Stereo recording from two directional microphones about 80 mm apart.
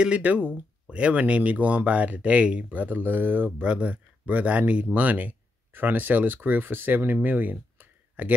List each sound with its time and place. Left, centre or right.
0.0 s speech: centre